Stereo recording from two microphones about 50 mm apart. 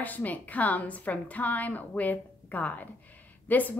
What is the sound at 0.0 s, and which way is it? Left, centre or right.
A woman's voice, left.